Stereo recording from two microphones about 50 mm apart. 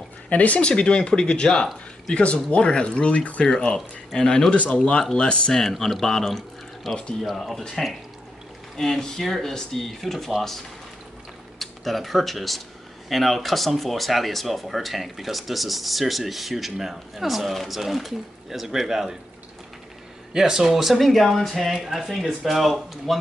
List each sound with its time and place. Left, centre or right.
0.3 s speech: left
3.4 s speech: centre
20.3 s speech: centre